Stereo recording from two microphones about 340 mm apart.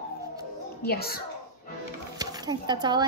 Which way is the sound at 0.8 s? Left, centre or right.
Left.